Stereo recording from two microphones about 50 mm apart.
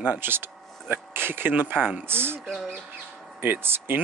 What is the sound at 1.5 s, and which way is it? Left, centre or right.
Speech, right.